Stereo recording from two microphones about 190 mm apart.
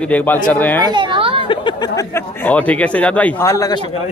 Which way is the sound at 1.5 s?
25° left (ahead or behind).